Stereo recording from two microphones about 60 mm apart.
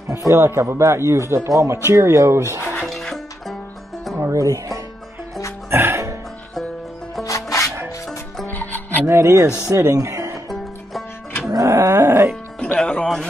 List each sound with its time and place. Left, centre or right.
0.0 s speech: right
2.7 s music: centre
4.2 s music: right
5.7 s music: right
7.2 s music: left
8.5 s music: left
9.0 s speech: right
10.0 s music: right
10.5 s music: centre
11.5 s roaring cats: right
11.9 s music: right
12.7 s music: centre